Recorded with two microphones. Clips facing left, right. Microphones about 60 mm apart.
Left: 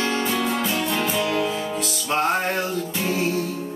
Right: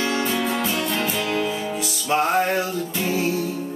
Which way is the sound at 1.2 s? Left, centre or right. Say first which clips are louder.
Left 1 dB; centre.